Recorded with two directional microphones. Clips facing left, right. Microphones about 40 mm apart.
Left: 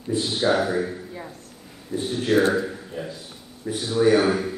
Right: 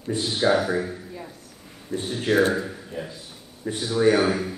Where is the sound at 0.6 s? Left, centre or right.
Centre.